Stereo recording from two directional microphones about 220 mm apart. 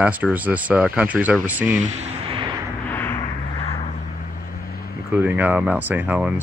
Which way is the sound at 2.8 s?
10° left (ahead or behind).